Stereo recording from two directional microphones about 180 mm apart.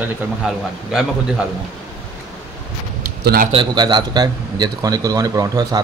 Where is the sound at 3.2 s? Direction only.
60° right (ahead or behind).